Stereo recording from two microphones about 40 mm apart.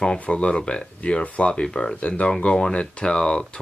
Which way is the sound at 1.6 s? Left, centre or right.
Centre.